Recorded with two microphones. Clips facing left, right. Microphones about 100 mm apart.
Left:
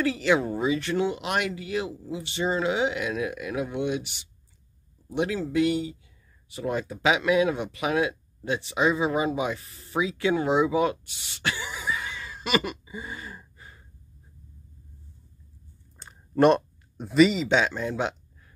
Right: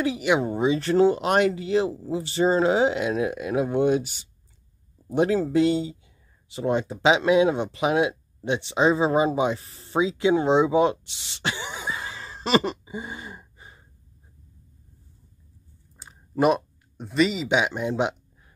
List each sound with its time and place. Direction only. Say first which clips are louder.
0.0 s speech: right 1 dB; 15° right (ahead or behind)
0.7 s speech: right 7 dB; 35° right (ahead or behind)
16.0 s speech: left 2 dB; 5° right (ahead or behind)